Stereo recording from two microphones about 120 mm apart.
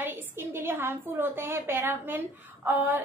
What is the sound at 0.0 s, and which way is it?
A woman's voice, 20° right (ahead or behind).